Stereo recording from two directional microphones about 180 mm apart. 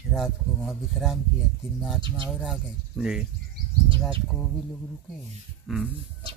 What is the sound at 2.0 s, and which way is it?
Speech, 30° right (ahead or behind).